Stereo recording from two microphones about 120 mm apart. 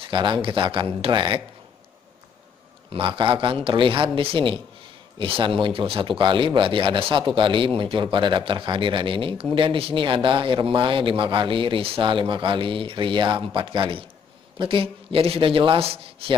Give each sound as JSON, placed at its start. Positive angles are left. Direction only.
{"t": 0.0, "sound": "speech", "side_deg": -40}
{"t": 2.9, "sound": "speech", "side_deg": -45}